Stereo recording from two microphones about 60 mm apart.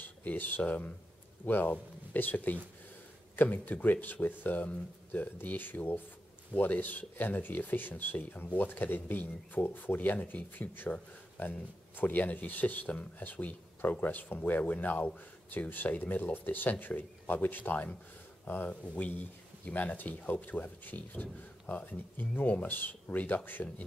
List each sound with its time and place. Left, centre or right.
0.0 s speech: left
12.8 s speech: centre